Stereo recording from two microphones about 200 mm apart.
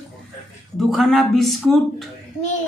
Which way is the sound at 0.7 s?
Centre (ahead or behind).